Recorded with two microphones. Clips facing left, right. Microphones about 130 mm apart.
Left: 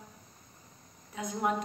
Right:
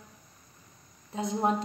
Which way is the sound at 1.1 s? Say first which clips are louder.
Right 4 dB; 30° right (ahead or behind).